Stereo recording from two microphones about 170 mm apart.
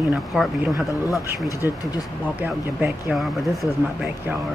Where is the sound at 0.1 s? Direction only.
Centre (ahead or behind).